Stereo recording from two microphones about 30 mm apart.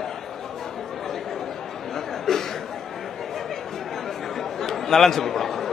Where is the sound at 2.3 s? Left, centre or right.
Centre.